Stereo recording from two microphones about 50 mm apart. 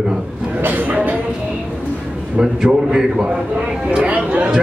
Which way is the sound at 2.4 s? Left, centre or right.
Right.